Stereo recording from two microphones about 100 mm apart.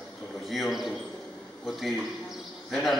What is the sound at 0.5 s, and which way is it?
Speech, centre (ahead or behind).